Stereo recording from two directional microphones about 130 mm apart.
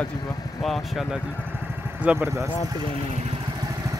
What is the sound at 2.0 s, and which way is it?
Speech, 10° right (ahead or behind).